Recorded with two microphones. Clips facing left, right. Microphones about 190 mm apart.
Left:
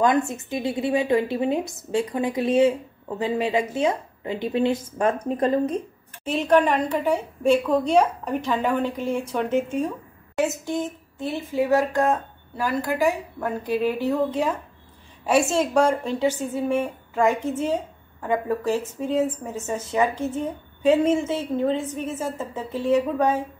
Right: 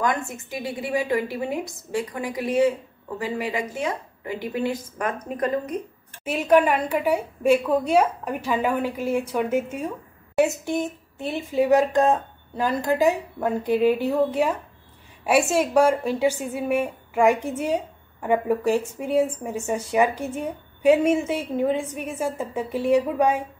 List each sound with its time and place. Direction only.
0.3 s a woman's voice: 20° left (ahead or behind)
6.2 s a woman's voice: 10° right (ahead or behind)